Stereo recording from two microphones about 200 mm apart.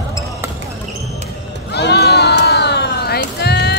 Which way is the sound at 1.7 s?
55° left (ahead or behind).